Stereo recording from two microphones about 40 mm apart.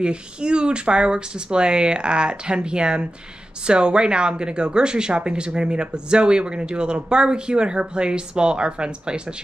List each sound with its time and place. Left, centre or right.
0.0 s a woman's voice: right